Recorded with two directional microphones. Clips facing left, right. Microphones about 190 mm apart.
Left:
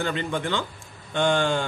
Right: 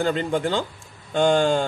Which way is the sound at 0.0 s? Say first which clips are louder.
Right 5 dB; 40° right (ahead or behind).